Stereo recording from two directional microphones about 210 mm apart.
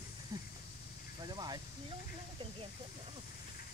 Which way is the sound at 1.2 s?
20° right (ahead or behind).